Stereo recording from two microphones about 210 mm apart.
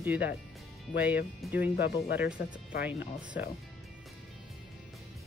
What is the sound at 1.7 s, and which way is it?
Speech, 50° left (ahead or behind).